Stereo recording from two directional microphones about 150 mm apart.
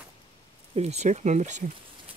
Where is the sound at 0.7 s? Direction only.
45° right (ahead or behind).